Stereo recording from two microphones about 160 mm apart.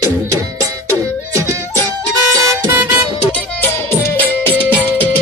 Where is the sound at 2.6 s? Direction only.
15° right (ahead or behind).